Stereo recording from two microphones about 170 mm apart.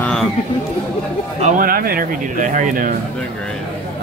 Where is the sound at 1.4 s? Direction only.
50° right (ahead or behind).